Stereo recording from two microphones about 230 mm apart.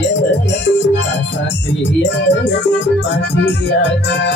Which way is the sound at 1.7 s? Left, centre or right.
Left.